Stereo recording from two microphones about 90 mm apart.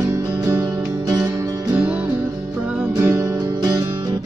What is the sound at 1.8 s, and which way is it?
Music, 15° right (ahead or behind).